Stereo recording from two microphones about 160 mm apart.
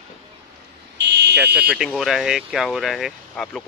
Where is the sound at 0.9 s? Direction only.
90° right.